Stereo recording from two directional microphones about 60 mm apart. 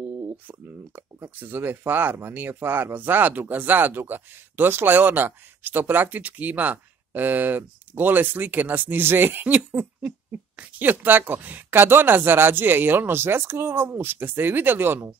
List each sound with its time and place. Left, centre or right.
1.3 s speech: right